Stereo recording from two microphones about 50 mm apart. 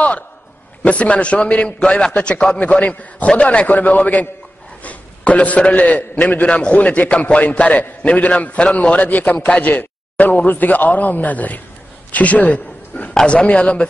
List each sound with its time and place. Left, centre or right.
0.8 s a man's voice: left
12.1 s a sound: left
13.3 s a man's voice: left